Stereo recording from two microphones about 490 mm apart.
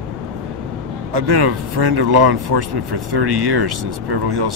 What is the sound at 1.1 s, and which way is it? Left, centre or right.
Speech, right.